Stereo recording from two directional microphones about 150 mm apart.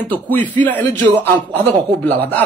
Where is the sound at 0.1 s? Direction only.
10° left (ahead or behind).